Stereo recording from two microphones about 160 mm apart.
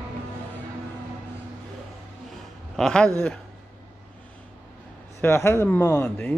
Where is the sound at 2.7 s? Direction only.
5° left (ahead or behind).